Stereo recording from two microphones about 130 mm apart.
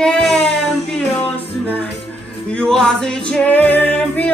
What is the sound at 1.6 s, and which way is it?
Music, 10° left (ahead or behind).